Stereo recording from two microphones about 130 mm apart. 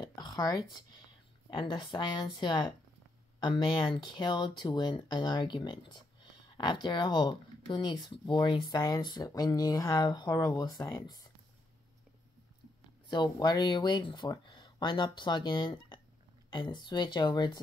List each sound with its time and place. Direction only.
0.0 s a sound: 35° left (ahead or behind)
1.5 s speech: 35° left (ahead or behind)
13.1 s speech: 30° left (ahead or behind)